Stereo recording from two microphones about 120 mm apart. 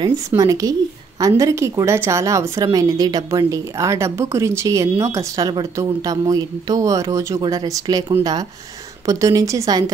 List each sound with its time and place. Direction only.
0.4 s a woman's voice: 30° right (ahead or behind)